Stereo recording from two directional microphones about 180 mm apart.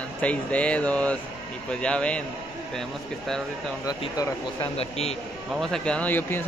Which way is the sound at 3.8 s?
20° left (ahead or behind).